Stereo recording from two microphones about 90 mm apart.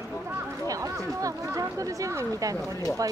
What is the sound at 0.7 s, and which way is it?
Chatter, 40° right (ahead or behind).